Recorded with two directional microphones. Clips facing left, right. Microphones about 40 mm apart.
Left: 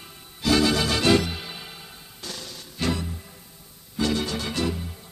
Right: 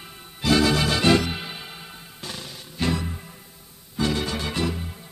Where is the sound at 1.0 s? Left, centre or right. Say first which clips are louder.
Right 1 dB; right.